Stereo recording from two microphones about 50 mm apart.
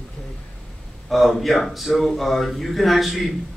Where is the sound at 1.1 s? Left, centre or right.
Centre.